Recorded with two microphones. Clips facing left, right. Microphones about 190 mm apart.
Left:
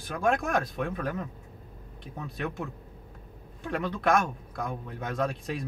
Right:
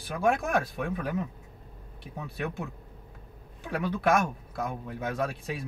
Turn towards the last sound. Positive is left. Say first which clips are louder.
# left 1 dB
turn(degrees=-5)  # may be behind; listen again after turning